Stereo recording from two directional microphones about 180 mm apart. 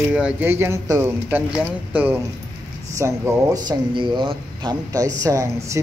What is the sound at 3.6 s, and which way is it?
Speech, 25° right (ahead or behind).